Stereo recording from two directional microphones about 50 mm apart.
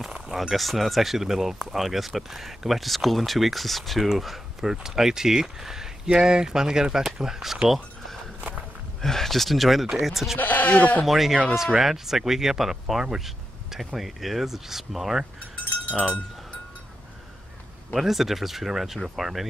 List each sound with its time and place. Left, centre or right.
0.3 s speech: centre
7.6 s a sound: centre
9.0 s speech: centre
10.4 s speech: left
11.1 s speech: centre
15.7 s cowbell: left
17.9 s speech: centre